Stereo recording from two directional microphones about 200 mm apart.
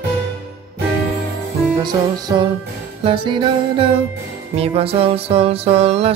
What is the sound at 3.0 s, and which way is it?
Music, 25° right (ahead or behind).